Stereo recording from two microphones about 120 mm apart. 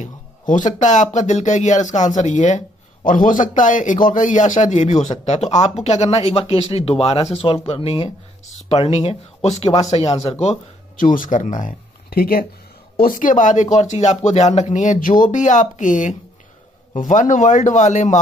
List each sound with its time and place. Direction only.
0.0 s speech: 90° left
5.2 s speech: 70° left (ahead or behind)
10.4 s speech: 75° left (ahead or behind); by 11.7 s 90° left
13.2 s speech: 90° left